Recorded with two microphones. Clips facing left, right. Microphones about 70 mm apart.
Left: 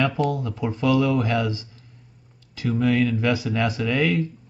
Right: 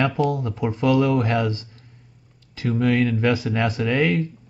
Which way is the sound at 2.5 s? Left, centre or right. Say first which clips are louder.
Right 1 dB; right.